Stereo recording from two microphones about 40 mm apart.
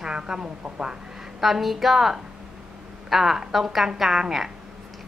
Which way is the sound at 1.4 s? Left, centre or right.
Centre.